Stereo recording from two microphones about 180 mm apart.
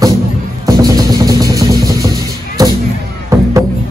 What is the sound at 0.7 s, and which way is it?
Music, 20° right (ahead or behind).